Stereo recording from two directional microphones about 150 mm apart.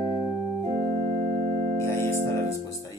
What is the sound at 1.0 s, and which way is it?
Organ, 50° right (ahead or behind).